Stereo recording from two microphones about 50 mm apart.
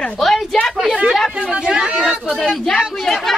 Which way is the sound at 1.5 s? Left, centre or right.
Centre.